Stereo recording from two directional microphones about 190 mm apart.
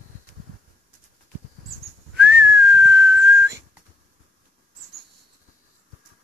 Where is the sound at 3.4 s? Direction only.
15° right (ahead or behind).